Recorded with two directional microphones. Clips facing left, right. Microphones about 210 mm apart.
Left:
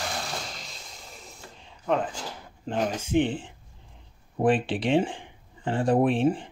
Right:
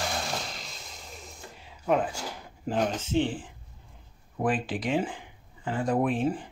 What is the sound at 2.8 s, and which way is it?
Speech, 10° left (ahead or behind).